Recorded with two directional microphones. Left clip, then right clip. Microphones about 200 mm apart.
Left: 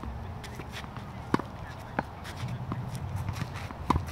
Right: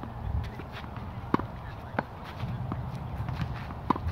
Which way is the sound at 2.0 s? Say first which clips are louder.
Right 1 dB; 40° right (ahead or behind).